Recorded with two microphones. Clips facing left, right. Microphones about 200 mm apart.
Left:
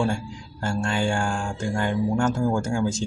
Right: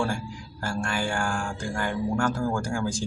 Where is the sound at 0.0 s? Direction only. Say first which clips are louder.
Left 3 dB; 20° left (ahead or behind).